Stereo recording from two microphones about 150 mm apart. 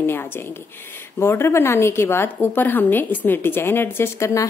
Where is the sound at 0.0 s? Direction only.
15° left (ahead or behind).